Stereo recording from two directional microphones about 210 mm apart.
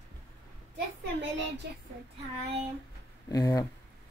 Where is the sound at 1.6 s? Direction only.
50° right (ahead or behind).